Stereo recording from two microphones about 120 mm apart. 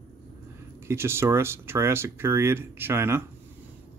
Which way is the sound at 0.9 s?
20° right (ahead or behind).